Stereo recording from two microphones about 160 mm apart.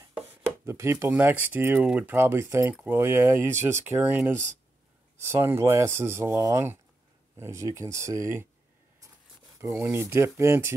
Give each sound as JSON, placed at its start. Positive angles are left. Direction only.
{"t": 0.7, "sound": "speech", "side_deg": -15}
{"t": 9.6, "sound": "speech", "side_deg": -15}